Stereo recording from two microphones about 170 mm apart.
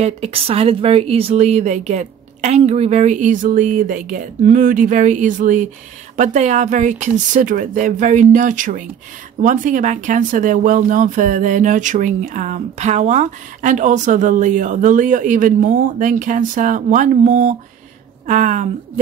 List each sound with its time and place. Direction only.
0.0 s speech: 35° right (ahead or behind)